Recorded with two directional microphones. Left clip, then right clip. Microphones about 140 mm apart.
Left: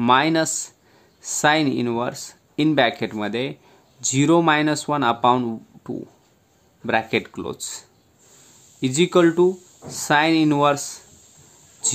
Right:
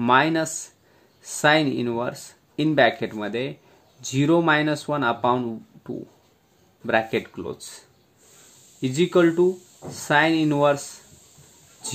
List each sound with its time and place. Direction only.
0.0 s speech: 30° left (ahead or behind)
8.8 s speech: 40° left (ahead or behind)